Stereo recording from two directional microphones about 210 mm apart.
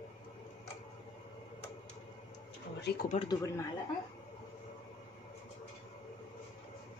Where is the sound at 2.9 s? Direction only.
50° left (ahead or behind).